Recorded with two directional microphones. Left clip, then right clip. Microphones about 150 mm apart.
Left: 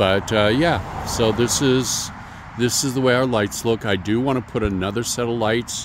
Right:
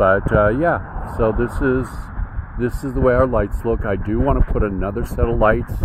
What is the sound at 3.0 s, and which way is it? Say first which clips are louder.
Speech: right 3 dB; 15° left (ahead or behind).